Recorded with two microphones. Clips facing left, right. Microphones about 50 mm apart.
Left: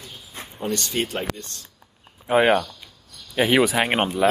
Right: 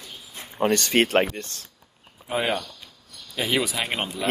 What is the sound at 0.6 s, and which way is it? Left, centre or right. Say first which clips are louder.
Speech: right 5 dB; right.